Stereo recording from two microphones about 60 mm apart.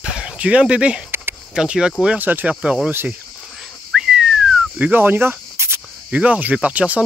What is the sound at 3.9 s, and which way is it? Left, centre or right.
Whistling, centre.